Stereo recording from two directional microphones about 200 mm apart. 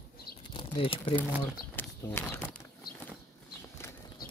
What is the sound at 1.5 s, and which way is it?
Speech, 10° left (ahead or behind).